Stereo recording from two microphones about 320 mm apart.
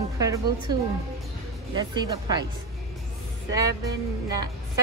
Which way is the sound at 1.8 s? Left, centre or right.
Centre.